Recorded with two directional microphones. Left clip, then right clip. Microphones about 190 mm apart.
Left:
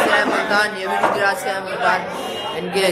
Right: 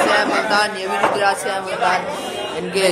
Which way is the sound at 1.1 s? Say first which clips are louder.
Right 1 dB; 15° right (ahead or behind).